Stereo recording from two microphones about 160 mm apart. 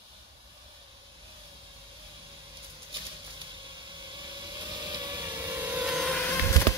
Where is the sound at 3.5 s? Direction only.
30° right (ahead or behind); by 6.3 s centre (ahead or behind).